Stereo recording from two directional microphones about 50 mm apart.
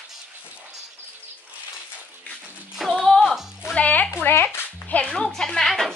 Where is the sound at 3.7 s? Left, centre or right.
Left.